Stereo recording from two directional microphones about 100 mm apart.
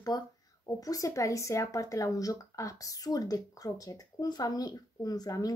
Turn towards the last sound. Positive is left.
turn(degrees=40)  # may be behind; listen again after turning